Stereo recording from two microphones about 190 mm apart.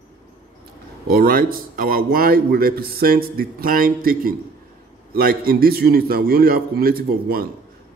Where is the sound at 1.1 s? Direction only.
50° right (ahead or behind).